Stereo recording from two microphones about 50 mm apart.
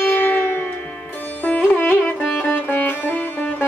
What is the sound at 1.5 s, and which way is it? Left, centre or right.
Music, left.